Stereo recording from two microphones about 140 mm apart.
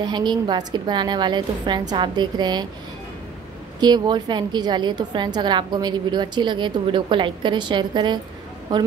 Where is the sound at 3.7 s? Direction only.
30° right (ahead or behind).